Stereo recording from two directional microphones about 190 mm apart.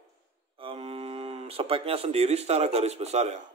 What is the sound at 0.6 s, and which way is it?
A man's voice, 30° right (ahead or behind).